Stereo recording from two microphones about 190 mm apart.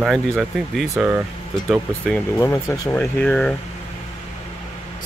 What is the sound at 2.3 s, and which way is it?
Speech, 15° left (ahead or behind).